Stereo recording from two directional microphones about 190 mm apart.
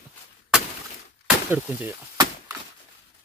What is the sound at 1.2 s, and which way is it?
Speech, 10° right (ahead or behind).